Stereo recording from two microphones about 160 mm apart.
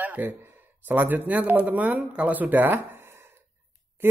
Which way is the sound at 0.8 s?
10° right (ahead or behind).